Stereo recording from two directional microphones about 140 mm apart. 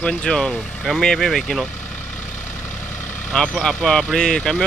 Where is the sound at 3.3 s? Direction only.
5° left (ahead or behind).